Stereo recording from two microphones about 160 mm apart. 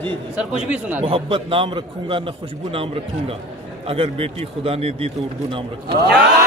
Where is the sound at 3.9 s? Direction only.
35° right (ahead or behind).